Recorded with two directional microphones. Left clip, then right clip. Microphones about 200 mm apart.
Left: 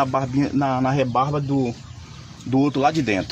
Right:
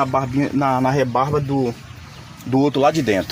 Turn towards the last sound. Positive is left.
turn(degrees=-30)  # may be behind; listen again after turning